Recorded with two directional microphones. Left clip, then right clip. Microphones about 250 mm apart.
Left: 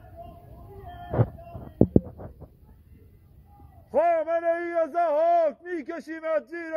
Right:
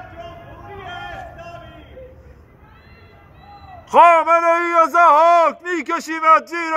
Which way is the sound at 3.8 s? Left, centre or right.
Right.